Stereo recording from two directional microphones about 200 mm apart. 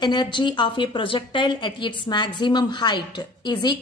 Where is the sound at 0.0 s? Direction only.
20° left (ahead or behind).